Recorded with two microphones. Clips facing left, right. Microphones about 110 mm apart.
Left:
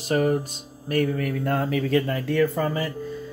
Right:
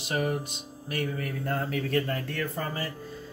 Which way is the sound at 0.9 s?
55° left (ahead or behind).